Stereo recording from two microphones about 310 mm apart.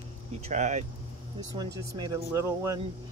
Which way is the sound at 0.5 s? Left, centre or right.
Right.